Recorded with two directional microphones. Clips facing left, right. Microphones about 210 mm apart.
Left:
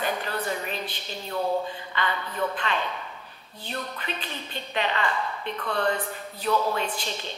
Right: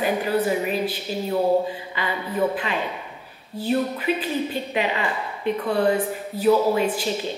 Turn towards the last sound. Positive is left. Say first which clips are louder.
# right 9 dB
turn(degrees=-5)  # may be behind; listen again after turning